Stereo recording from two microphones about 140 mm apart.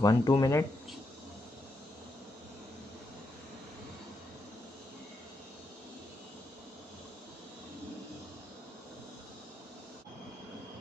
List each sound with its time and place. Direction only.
0.0 s speech: 30° left (ahead or behind)